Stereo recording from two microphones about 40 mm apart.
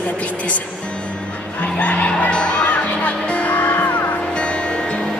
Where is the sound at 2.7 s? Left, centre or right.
Left.